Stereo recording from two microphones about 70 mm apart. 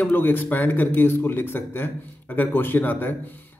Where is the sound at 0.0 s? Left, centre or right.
Left.